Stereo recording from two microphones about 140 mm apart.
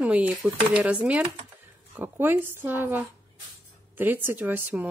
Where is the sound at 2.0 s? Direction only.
15° right (ahead or behind).